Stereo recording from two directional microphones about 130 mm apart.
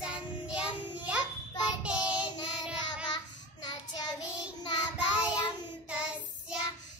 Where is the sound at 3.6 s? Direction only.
35° left (ahead or behind).